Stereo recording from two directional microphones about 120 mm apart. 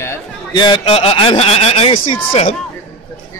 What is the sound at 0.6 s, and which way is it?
A man's voice, 45° left (ahead or behind).